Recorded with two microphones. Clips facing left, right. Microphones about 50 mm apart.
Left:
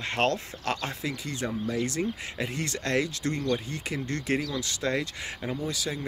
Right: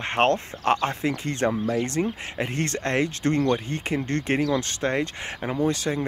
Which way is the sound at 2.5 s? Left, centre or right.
Right.